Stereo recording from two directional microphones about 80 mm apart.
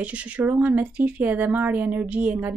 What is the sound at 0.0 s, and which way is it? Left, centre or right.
Speech, centre.